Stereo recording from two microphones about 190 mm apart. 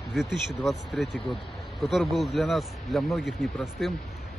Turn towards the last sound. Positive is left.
turn(degrees=0)  # may be behind; listen again after turning